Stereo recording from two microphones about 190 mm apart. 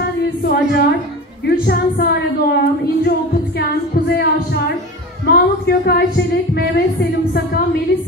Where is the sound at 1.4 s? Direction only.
55° left (ahead or behind).